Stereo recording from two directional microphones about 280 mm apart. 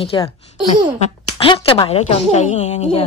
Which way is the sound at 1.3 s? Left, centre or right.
Centre.